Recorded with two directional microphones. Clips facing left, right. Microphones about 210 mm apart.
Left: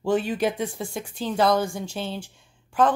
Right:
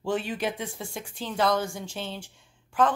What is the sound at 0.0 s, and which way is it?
Speech, 45° left (ahead or behind).